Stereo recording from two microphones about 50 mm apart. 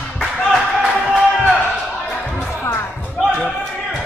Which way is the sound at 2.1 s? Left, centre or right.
Centre.